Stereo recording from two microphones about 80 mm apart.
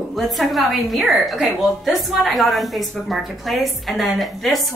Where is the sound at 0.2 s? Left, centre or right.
Centre.